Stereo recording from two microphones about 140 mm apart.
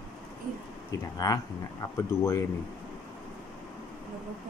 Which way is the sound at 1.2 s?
25° left (ahead or behind).